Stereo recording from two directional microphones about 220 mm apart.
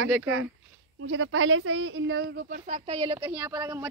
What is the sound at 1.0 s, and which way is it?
A woman's voice, 60° right (ahead or behind).